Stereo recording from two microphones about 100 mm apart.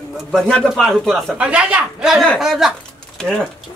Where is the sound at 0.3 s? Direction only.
5° left (ahead or behind).